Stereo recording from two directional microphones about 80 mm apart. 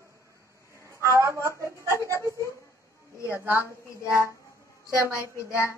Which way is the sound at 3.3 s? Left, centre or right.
Right.